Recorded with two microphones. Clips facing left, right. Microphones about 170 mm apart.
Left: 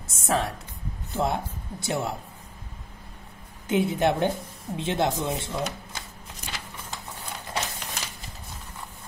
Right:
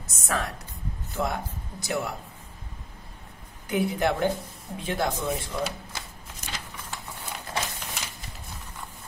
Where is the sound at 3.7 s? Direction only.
25° left (ahead or behind).